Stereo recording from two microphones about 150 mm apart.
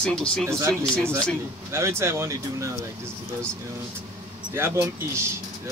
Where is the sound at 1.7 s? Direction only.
20° right (ahead or behind).